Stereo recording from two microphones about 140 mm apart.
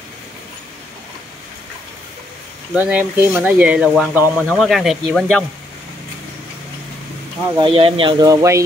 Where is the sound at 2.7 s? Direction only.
10° right (ahead or behind).